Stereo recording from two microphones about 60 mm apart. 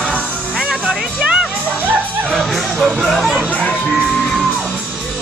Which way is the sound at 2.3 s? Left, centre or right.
Centre.